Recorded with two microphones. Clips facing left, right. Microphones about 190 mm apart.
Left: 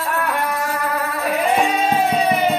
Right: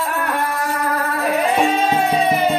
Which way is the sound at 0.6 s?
Centre (ahead or behind).